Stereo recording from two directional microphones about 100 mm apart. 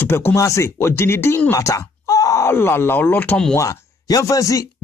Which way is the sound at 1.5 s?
30° left (ahead or behind).